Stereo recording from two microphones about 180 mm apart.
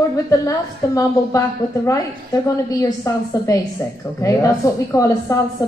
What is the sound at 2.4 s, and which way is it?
A woman's voice, 15° left (ahead or behind).